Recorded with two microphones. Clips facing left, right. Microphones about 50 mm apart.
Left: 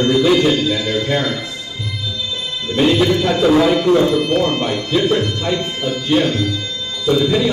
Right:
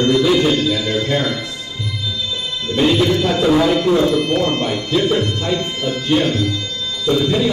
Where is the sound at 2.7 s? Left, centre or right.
Left.